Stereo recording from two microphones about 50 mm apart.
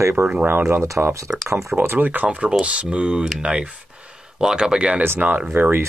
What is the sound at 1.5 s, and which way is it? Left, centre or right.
Speech, right.